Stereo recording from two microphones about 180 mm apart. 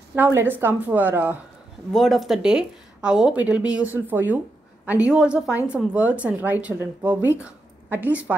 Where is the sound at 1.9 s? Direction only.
Centre (ahead or behind).